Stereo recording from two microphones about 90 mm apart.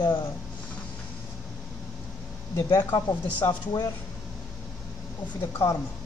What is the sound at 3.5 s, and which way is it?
Speech, 50° left (ahead or behind).